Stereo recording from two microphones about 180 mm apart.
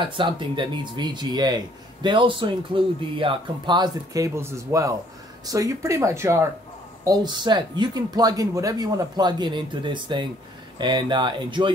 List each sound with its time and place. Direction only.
0.0 s speech: 25° right (ahead or behind)